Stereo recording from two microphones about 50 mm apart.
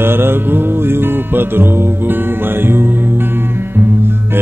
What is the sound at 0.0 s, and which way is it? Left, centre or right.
Music, right.